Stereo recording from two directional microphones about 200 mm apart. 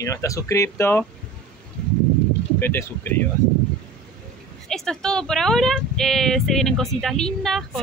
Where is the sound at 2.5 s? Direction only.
10° left (ahead or behind).